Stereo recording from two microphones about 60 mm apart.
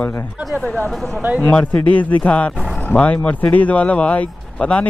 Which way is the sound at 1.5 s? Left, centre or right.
Left.